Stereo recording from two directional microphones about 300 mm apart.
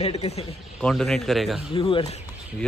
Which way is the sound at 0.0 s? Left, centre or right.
Left.